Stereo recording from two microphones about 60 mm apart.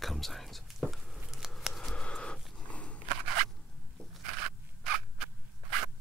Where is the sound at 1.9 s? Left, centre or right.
Centre.